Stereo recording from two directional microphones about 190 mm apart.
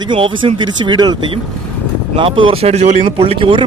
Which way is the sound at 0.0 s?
25° right (ahead or behind).